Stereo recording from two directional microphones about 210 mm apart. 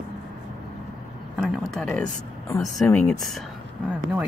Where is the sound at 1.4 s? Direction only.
Centre (ahead or behind).